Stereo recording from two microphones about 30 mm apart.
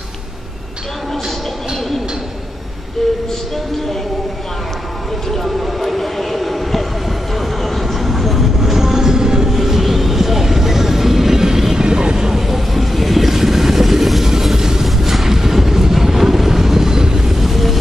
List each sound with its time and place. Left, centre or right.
5.3 s a sound: centre
7.3 s vehicle: centre
8.5 s train: centre
9.6 s vehicle: centre; by 12.4 s right
12.4 s vehicle: centre
17.4 s vehicle: centre